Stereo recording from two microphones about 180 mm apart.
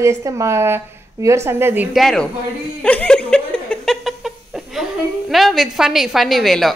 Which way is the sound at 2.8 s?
5° left (ahead or behind).